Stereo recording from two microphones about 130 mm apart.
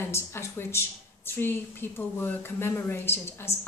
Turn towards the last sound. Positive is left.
turn(degrees=20)  # may be behind; listen again after turning